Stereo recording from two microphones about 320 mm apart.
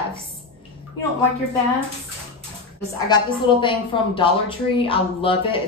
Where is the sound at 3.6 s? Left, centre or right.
Centre.